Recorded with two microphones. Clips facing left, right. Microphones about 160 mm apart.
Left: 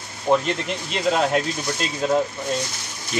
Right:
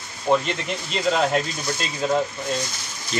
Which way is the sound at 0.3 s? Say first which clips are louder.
Left 1 dB; centre (ahead or behind).